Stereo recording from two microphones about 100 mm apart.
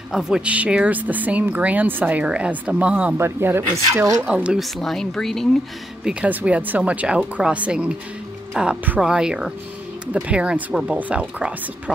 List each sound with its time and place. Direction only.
0.1 s speech: 5° right (ahead or behind)
3.2 s speech: 25° right (ahead or behind)
4.2 s speech: 10° right (ahead or behind)
4.7 s speech: 5° left (ahead or behind)
6.0 s speech: 15° right (ahead or behind)